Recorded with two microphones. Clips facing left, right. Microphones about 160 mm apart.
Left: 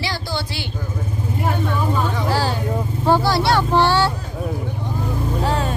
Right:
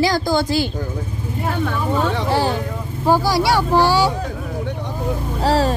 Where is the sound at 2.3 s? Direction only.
20° right (ahead or behind).